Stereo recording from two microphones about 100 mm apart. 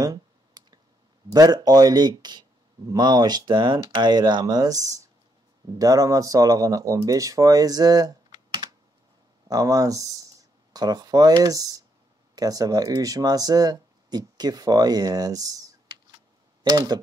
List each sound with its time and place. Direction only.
0.0 s clicking: 40° right (ahead or behind)
1.3 s speech: 40° right (ahead or behind)